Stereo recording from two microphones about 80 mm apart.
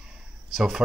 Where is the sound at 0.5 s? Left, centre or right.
Centre.